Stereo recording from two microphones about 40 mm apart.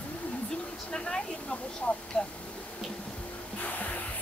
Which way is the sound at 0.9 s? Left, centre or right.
Centre.